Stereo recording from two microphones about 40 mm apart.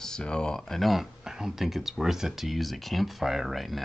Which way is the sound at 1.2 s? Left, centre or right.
Centre.